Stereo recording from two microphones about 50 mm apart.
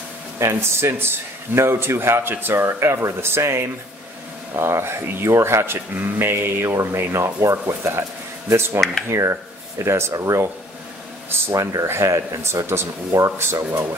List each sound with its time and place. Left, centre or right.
0.4 s speech: right
3.2 s speech: right
5.2 s speech: right
7.6 s speech: right
9.1 s speech: right
11.6 s speech: right